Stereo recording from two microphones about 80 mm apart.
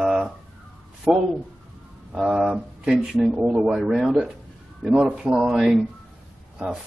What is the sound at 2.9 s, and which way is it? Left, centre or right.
A man's voice, centre.